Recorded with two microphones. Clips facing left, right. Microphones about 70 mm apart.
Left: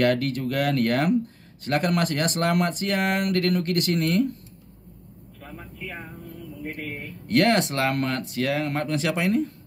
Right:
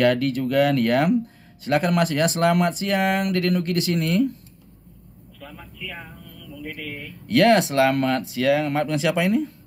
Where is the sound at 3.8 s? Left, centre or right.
Left.